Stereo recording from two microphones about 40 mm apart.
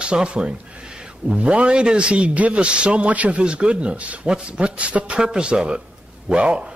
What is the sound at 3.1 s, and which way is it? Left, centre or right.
Speech, right.